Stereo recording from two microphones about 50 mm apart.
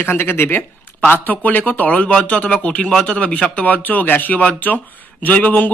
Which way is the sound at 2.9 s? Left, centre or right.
Centre.